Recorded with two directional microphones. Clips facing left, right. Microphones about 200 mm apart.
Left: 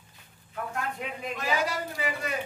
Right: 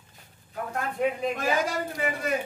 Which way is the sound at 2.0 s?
50° right (ahead or behind).